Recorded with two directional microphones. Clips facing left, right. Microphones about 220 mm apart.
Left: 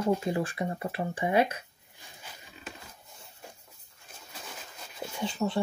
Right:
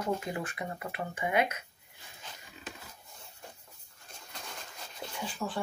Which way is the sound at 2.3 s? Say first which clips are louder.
Even; 10° left (ahead or behind).